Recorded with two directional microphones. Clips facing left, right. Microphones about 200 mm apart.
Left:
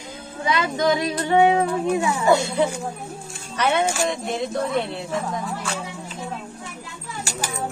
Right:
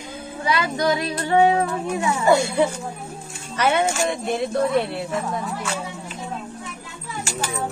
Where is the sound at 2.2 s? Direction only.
10° right (ahead or behind).